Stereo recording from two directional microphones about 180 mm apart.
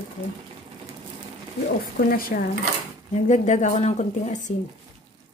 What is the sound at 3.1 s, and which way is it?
Speech, 40° left (ahead or behind).